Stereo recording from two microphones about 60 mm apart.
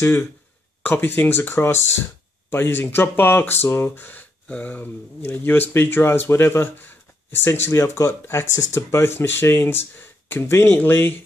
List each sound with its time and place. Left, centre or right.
0.0 s speech: left
7.8 s speech: left